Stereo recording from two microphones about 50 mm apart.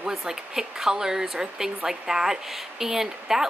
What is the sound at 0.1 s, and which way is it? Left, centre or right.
Speech, centre.